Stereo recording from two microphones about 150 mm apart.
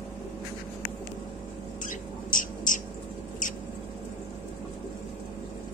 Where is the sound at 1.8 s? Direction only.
60° left (ahead or behind).